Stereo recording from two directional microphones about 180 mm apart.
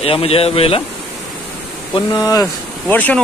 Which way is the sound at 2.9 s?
10° left (ahead or behind).